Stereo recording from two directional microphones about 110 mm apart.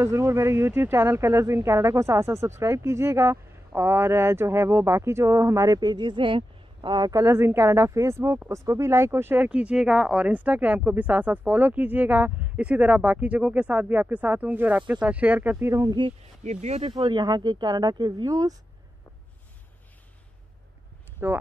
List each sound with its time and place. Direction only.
0.0 s speech: 25° right (ahead or behind)
16.4 s speech: 80° right
16.9 s speech: 45° right (ahead or behind)
21.2 s speech: 20° right (ahead or behind)